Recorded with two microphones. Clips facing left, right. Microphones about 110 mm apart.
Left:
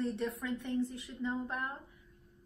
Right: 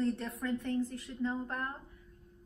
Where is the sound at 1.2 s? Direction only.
15° left (ahead or behind).